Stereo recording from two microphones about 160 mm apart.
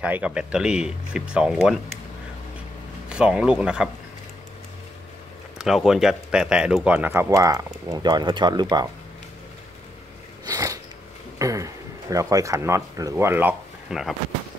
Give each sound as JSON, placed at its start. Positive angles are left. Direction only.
{"t": 0.0, "sound": "speech", "side_deg": -10}
{"t": 3.1, "sound": "speech", "side_deg": -5}
{"t": 5.6, "sound": "speech", "side_deg": 0}
{"t": 10.4, "sound": "biting", "side_deg": -20}
{"t": 11.3, "sound": "speech", "side_deg": -20}